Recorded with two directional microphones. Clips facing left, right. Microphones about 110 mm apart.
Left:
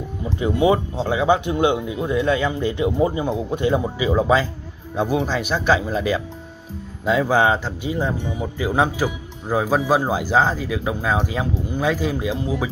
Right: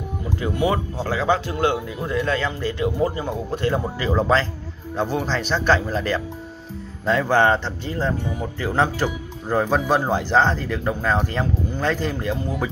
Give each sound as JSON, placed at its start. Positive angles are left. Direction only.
{"t": 0.2, "sound": "speech", "side_deg": 20}